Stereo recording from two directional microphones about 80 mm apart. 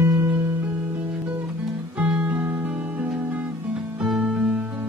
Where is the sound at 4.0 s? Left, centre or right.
Centre.